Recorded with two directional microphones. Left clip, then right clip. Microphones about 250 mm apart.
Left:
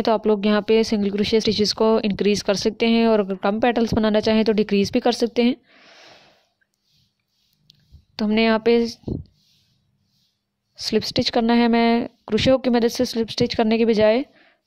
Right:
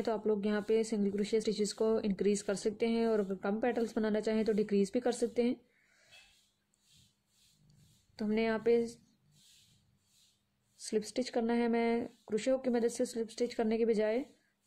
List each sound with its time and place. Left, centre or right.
0.0 s speech: left
8.2 s speech: left
10.8 s speech: left